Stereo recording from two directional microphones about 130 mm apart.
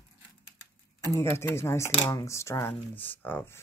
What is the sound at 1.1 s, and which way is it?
Speech, 20° left (ahead or behind).